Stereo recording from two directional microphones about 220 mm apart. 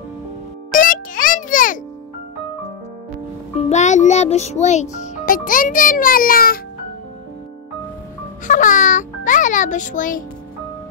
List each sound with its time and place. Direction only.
0.7 s music: 40° left (ahead or behind)
3.6 s a child's voice: 30° left (ahead or behind)
8.5 s a child's voice: 35° left (ahead or behind)